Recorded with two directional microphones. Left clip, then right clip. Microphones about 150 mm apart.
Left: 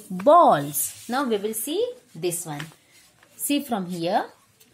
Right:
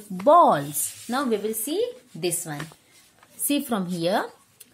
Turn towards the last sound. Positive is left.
turn(degrees=-5)  # may be behind; listen again after turning